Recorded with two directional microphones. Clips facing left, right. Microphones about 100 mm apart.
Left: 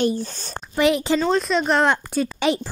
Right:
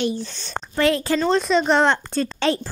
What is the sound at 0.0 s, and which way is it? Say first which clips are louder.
Speech: left 3 dB; 45° left (ahead or behind).